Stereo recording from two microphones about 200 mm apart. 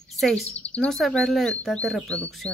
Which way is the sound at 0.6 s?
5° left (ahead or behind).